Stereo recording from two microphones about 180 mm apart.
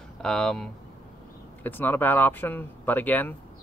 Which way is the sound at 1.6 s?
10° left (ahead or behind).